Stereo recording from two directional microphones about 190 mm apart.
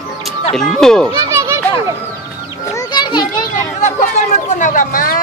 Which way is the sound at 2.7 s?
20° left (ahead or behind).